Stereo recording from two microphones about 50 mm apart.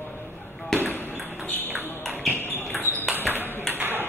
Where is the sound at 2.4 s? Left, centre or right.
Left.